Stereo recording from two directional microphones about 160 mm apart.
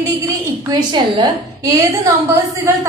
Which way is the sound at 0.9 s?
25° right (ahead or behind).